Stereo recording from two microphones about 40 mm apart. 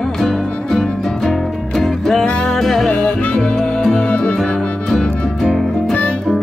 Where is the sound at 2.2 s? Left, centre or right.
Left.